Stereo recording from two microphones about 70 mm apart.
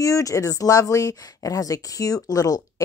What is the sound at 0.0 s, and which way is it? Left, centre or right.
Speech, left.